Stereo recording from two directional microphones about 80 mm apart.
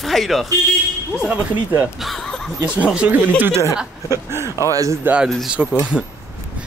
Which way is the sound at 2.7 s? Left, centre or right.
Centre.